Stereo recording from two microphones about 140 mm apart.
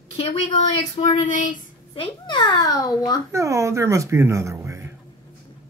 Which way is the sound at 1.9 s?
35° left (ahead or behind).